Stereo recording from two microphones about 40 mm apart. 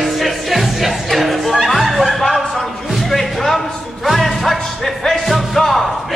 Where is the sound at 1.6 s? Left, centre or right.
Centre.